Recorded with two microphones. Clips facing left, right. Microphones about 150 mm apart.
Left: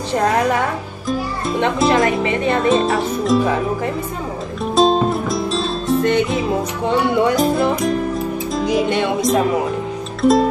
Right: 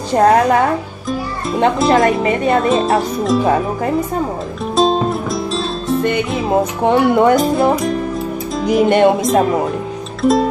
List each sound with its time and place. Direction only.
0.1 s speech: 40° right (ahead or behind)
1.8 s speech: centre (ahead or behind)
2.2 s speech: 40° right (ahead or behind)
2.7 s speech: centre (ahead or behind)
4.7 s music: centre (ahead or behind)
6.9 s music: 50° right (ahead or behind)
7.3 s speech: centre (ahead or behind)
8.5 s music: centre (ahead or behind)
8.8 s music: 50° right (ahead or behind)
10.2 s speech: centre (ahead or behind)